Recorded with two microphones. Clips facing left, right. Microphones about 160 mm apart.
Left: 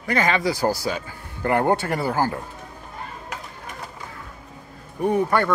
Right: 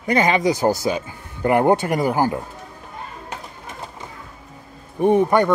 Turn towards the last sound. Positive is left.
turn(degrees=-20)  # may be behind; listen again after turning